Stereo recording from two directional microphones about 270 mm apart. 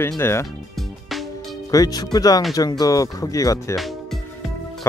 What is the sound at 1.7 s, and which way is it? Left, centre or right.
Speech, centre.